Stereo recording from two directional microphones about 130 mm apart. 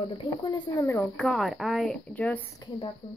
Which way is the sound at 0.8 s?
20° left (ahead or behind).